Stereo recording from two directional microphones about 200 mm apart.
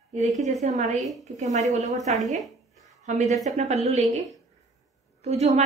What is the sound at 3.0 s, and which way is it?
A woman's voice, 35° right (ahead or behind).